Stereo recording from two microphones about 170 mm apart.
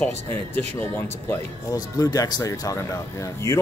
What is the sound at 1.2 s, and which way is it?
A woman's voice, 20° left (ahead or behind).